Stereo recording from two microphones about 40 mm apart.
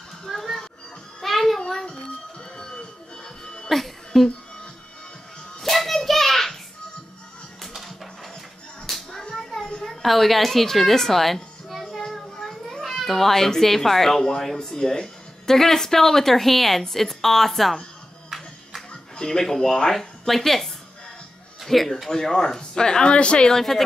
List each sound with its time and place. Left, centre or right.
0.3 s a sound: centre
1.2 s music: centre
3.6 s music: centre
5.6 s hands: centre
7.6 s music: centre
9.2 s a sound: centre
10.0 s a child's voice: centre
19.1 s a woman's voice: centre